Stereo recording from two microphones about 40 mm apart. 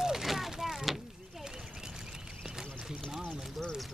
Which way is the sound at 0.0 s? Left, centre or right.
Centre.